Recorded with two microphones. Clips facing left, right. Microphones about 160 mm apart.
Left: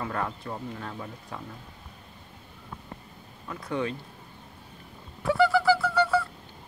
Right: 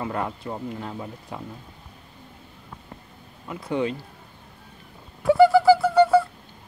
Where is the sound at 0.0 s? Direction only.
20° right (ahead or behind).